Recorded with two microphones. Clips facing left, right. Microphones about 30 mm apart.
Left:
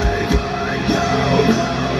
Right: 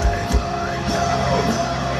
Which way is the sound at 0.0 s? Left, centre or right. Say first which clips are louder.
Left 4 dB; left.